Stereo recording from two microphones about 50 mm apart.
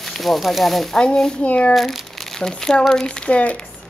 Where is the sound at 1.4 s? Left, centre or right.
Left.